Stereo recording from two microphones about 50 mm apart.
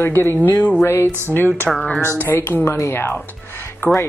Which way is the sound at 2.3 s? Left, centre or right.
Left.